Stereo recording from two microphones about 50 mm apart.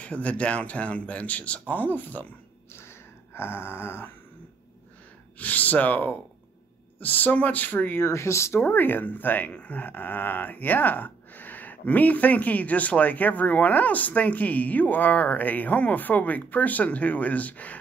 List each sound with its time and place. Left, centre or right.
0.0 s speech: left
3.3 s gasp: left
5.4 s speech: left
8.0 s speech: left
8.6 s speech: left